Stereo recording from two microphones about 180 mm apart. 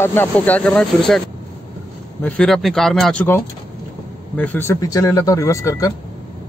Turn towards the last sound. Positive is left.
turn(degrees=20)  # may be behind; listen again after turning